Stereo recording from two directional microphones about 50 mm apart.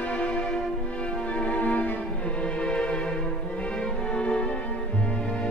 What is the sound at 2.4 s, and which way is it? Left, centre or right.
Music, centre.